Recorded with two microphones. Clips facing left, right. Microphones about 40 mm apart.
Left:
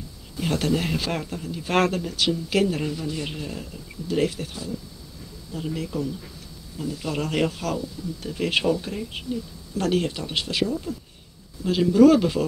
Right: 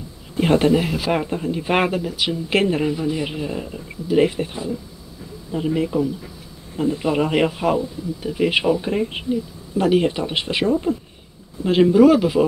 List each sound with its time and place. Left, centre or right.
0.4 s speech: right
0.7 s speech: centre
1.1 s speech: right
1.7 s speech: centre
2.5 s speech: right
2.8 s speech: right
8.2 s speech: centre
8.9 s speech: right
9.3 s speech: centre
11.9 s speech: centre